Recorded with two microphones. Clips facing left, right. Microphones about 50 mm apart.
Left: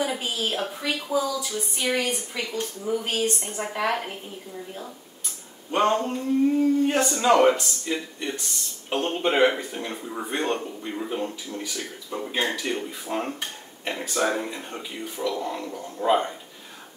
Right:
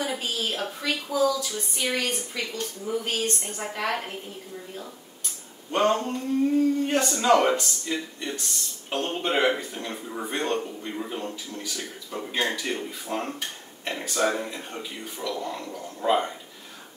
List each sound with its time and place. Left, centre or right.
0.0 s a sound: centre
0.3 s speech: centre
5.7 s speech: centre